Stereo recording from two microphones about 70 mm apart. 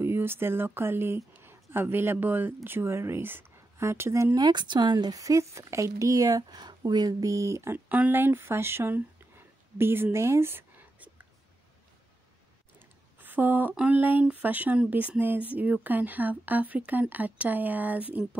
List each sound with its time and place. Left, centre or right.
0.0 s speech: right
4.4 s speech: right
5.1 s speech: right
7.7 s a woman's voice: right
12.7 s a sound: right
13.7 s speech: right